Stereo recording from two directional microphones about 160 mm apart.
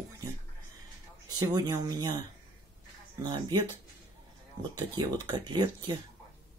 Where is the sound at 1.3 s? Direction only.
25° right (ahead or behind).